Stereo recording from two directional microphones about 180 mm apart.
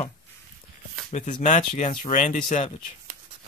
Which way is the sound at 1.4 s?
40° left (ahead or behind).